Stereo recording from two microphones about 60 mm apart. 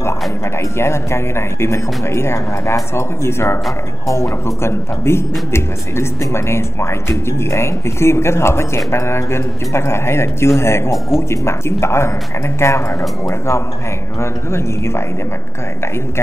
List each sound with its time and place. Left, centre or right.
0.7 s speech: left
4.1 s speech: left
4.6 s speech: left
14.2 s speech: left